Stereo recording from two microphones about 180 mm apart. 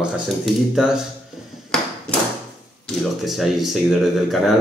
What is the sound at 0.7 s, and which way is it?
Speech, 5° right (ahead or behind).